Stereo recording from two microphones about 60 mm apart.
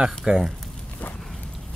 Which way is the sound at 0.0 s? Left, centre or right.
Centre.